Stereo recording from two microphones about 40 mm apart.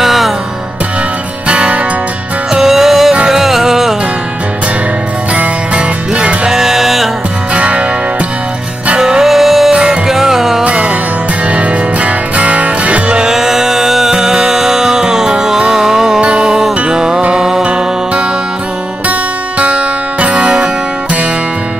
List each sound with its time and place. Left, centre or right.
0.0 s music: centre
1.5 s music: right
2.5 s music: centre
5.3 s music: right
6.5 s music: centre
7.5 s music: right
9.0 s music: centre
10.6 s music: right
13.2 s music: centre
16.2 s music: right
19.6 s music: right